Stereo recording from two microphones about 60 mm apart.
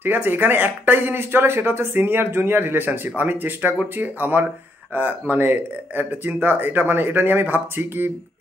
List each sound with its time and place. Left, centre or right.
0.0 s speech: right